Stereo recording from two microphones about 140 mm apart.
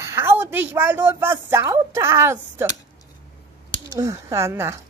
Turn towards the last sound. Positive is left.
turn(degrees=-20)  # may be behind; listen again after turning